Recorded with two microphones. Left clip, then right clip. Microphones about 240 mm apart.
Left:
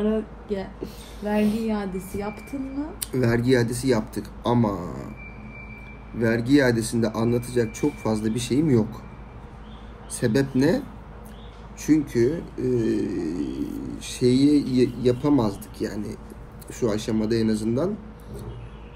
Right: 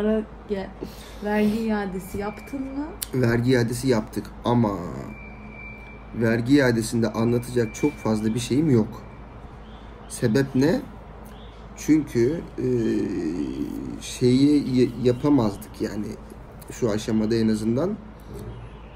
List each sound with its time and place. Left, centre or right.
0.0 s speech: centre
1.4 s a man's voice: centre
1.7 s speech: centre
3.0 s a man's voice: centre
6.1 s a man's voice: centre
10.1 s a man's voice: centre